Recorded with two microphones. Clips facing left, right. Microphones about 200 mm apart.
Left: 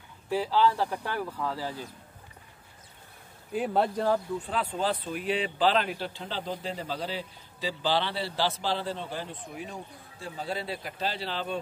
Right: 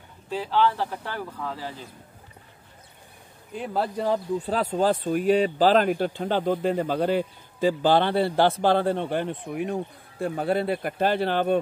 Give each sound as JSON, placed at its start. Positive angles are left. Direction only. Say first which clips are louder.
{"t": 0.3, "sound": "speech", "louder": "right 1 dB", "side_deg": 10}
{"t": 3.5, "sound": "speech", "louder": "left 1 dB", "side_deg": 0}
{"t": 4.0, "sound": "speech", "louder": "right 2 dB", "side_deg": -15}
{"t": 4.4, "sound": "speech", "louder": "right 6 dB", "side_deg": -40}